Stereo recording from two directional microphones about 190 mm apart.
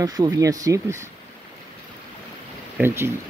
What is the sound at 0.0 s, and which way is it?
Speech, 20° right (ahead or behind).